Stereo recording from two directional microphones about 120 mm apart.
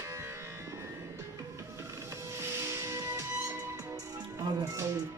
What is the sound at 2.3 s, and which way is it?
Music, 20° right (ahead or behind).